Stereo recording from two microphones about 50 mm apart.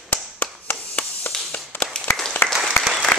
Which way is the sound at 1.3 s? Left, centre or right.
Centre.